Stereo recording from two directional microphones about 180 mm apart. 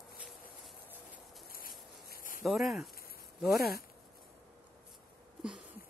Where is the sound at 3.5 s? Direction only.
60° left (ahead or behind).